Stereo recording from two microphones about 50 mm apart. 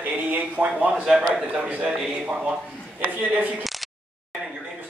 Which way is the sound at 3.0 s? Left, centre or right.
Right.